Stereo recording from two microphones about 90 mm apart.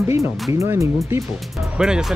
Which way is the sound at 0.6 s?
35° right (ahead or behind).